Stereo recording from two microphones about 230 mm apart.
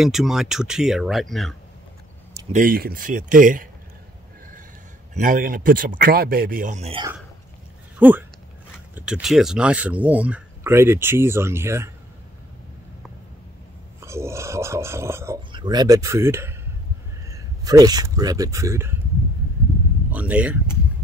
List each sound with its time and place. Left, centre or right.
0.0 s speech: centre
2.5 s speech: right
5.1 s speech: right
8.0 s speech: centre
14.0 s speech: centre
20.1 s speech: centre